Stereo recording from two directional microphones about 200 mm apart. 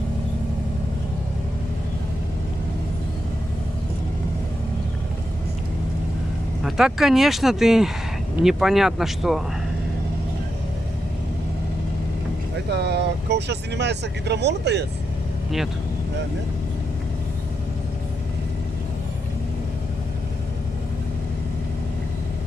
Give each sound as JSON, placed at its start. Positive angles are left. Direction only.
{"t": 6.6, "sound": "speech", "side_deg": 0}
{"t": 12.7, "sound": "speech", "side_deg": -55}